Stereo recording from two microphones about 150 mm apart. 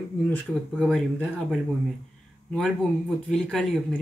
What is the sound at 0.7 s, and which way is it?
Speech, centre (ahead or behind).